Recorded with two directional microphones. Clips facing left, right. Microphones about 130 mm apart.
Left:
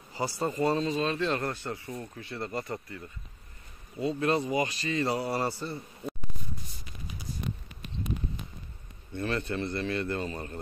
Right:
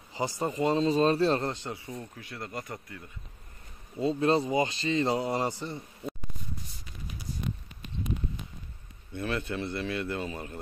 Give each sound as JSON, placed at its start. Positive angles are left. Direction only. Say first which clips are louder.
{"t": 0.1, "sound": "speech", "louder": "even", "side_deg": -20}
{"t": 0.8, "sound": "a man's voice", "louder": "right 5 dB", "side_deg": -35}
{"t": 1.4, "sound": "speech", "louder": "even", "side_deg": -20}
{"t": 2.0, "sound": "a man's voice", "louder": "left 3 dB", "side_deg": 0}
{"t": 4.0, "sound": "speech", "louder": "right 2 dB", "side_deg": -25}
{"t": 9.1, "sound": "a man's voice", "louder": "left 1 dB", "side_deg": -5}